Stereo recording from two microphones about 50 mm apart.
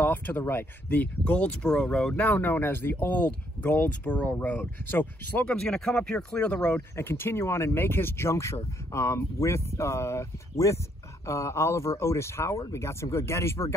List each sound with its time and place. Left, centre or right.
0.0 s speech: left
0.8 s speech: left
1.7 s speech: centre
2.1 s speech: left
5.6 s speech: centre
6.4 s speech: left
7.0 s speech: left